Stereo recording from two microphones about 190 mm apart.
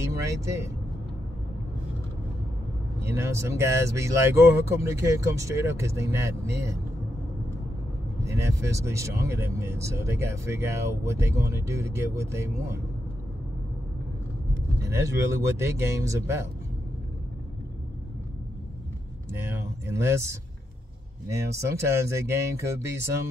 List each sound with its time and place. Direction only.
0.0 s speech: 15° right (ahead or behind)
3.0 s speech: 15° right (ahead or behind)
8.4 s speech: 15° right (ahead or behind)
14.8 s speech: 15° right (ahead or behind)
19.3 s speech: 15° right (ahead or behind)
21.5 s speech: 15° right (ahead or behind)